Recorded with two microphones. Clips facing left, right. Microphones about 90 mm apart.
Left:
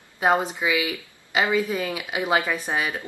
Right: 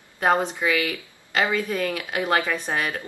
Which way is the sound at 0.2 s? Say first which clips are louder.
Even; 5° left (ahead or behind).